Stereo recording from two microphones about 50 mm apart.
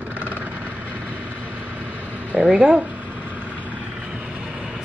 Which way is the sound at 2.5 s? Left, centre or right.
Centre.